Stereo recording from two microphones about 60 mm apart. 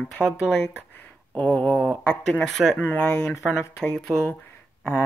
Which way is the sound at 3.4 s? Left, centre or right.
Centre.